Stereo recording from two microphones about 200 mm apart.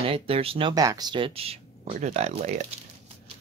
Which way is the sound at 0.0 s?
30° right (ahead or behind).